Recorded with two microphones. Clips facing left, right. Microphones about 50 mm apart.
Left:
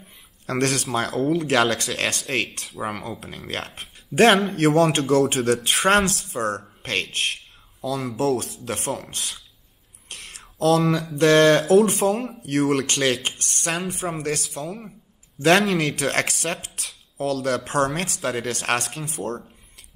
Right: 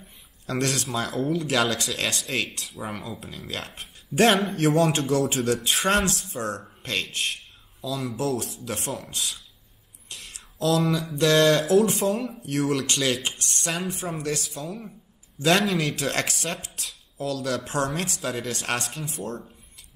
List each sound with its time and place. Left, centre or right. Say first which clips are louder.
0.5 s a man's voice: left 4 dB; left
10.0 s whispering: left 2 dB; left
11.1 s speech: left 4 dB; left
14.6 s speech: left 3 dB; left
15.3 s speech: left 4 dB; left